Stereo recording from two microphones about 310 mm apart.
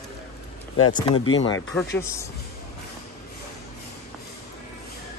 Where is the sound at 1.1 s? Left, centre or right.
Left.